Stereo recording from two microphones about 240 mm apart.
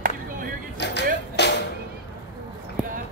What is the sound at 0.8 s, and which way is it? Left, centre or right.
Music, left.